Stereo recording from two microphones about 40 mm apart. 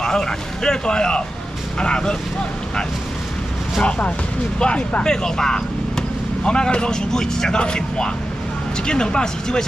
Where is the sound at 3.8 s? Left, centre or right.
Left.